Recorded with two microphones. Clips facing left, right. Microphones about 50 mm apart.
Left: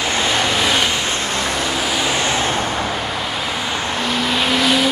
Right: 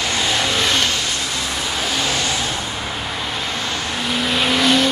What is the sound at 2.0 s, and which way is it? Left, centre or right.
Vehicle, left.